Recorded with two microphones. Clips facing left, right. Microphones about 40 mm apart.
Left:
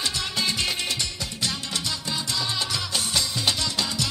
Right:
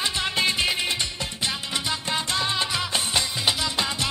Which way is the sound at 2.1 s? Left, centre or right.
Right.